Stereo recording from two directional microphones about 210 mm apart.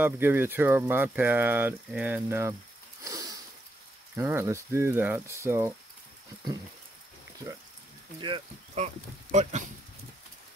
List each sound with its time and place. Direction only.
0.0 s speech: 10° right (ahead or behind)
3.0 s sniff: 15° right (ahead or behind)
4.1 s speech: 10° right (ahead or behind)
8.2 s speech: 30° right (ahead or behind)